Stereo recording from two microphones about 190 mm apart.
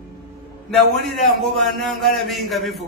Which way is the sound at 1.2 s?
Centre (ahead or behind).